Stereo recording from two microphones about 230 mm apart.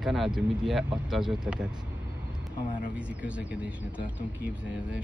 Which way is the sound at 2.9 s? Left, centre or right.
Centre.